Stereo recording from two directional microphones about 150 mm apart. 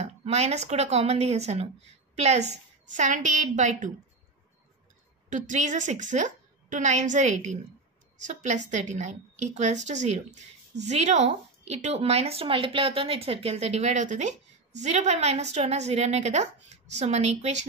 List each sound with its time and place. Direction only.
0.2 s a woman's voice: 45° right (ahead or behind)
5.3 s a woman's voice: 55° right (ahead or behind)